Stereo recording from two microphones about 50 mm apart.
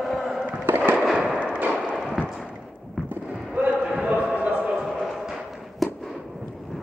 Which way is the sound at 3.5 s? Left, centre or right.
Right.